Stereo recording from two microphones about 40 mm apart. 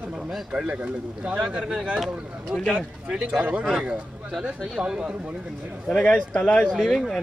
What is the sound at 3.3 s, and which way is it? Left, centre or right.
Speech, right.